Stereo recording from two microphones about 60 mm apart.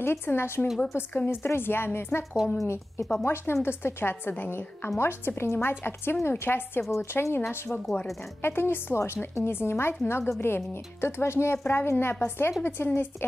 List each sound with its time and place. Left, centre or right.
0.0 s a woman's voice: left
6.9 s a woman's voice: left
7.3 s a woman's voice: left